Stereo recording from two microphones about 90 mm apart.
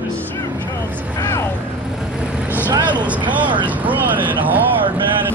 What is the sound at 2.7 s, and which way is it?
Vehicle, 55° right (ahead or behind).